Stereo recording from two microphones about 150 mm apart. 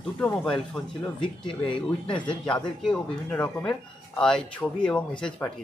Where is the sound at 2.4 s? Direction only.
5° left (ahead or behind).